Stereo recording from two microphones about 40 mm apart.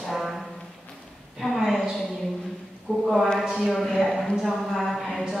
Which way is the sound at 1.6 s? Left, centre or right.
Centre.